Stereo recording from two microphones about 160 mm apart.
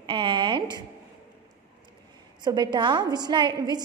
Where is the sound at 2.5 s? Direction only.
30° right (ahead or behind).